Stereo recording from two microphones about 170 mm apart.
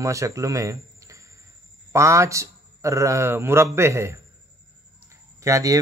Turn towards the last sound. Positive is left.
turn(degrees=-20)  # may be behind; listen again after turning